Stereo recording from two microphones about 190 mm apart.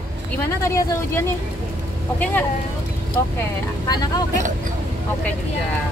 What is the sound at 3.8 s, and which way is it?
Speech, 20° left (ahead or behind).